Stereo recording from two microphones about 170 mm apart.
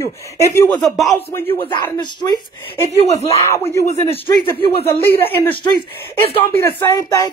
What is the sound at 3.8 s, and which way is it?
Speech, 35° left (ahead or behind).